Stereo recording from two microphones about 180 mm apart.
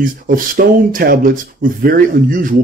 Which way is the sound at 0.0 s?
50° right (ahead or behind).